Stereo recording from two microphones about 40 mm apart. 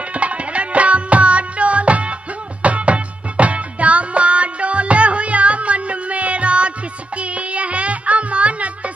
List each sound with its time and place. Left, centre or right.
0.1 s music: right